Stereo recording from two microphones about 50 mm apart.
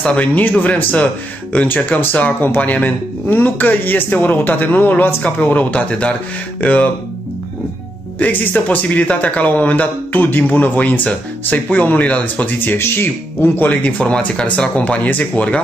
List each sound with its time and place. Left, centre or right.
0.2 s speech: left
8.2 s speech: left
12.7 s speech: left